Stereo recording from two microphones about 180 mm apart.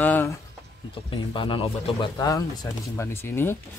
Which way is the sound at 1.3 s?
30° left (ahead or behind).